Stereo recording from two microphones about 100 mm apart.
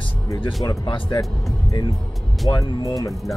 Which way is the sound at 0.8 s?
50° left (ahead or behind).